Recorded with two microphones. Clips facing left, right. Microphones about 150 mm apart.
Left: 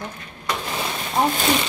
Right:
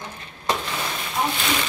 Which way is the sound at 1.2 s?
40° left (ahead or behind).